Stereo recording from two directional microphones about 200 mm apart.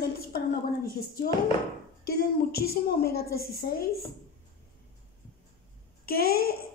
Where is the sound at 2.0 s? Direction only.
50° left (ahead or behind).